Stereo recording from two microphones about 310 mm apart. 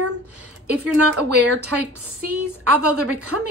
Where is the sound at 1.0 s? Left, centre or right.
Right.